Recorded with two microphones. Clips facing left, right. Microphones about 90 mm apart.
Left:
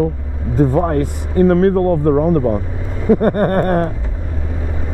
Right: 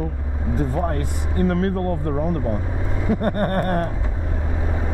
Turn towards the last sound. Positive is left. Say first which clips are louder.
# left 7 dB
turn(degrees=40)  # may be behind; listen again after turning